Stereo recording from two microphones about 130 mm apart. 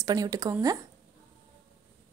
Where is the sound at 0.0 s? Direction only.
25° right (ahead or behind).